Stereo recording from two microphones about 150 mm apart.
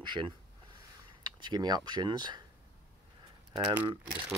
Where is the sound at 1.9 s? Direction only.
30° right (ahead or behind).